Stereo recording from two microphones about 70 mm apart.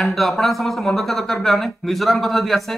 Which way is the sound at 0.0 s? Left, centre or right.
Centre.